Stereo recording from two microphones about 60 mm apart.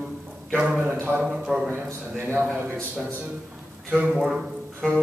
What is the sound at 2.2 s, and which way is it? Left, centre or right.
Speech, right.